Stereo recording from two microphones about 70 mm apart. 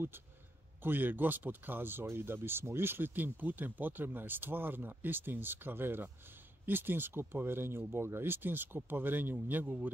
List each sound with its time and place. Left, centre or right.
0.8 s speech: right